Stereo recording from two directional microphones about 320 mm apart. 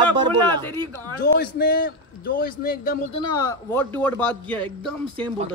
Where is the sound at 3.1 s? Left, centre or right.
Centre.